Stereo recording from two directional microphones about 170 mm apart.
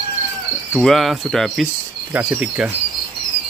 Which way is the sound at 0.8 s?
Centre (ahead or behind).